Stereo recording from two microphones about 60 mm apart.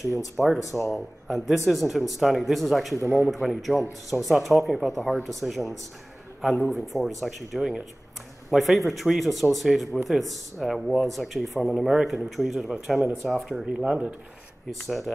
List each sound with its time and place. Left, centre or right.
0.6 s speech: left
0.9 s speech: centre
13.5 s speech: centre
14.7 s speech: centre